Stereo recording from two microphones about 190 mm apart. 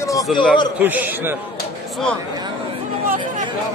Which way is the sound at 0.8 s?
10° right (ahead or behind).